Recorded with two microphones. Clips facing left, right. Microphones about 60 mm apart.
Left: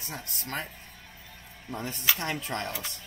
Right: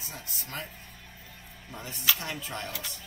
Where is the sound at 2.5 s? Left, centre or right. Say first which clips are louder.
Left 4 dB; left.